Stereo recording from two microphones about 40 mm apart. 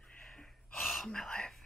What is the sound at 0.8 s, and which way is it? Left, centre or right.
Speech, centre.